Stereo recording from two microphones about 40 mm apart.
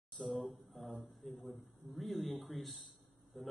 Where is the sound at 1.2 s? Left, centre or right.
Centre.